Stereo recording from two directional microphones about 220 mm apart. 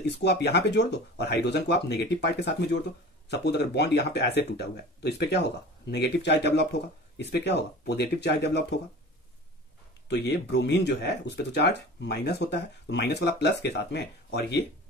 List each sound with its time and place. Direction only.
0.0 s speech: 50° left (ahead or behind)
10.0 s speech: 50° left (ahead or behind)